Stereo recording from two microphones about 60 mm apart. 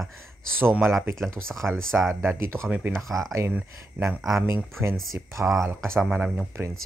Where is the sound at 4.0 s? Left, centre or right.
Right.